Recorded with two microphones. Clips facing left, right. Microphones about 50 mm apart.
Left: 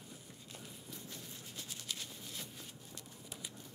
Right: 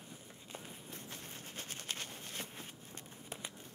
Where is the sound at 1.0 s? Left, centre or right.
Right.